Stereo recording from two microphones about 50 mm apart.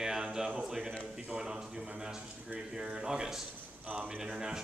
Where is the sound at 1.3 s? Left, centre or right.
Centre.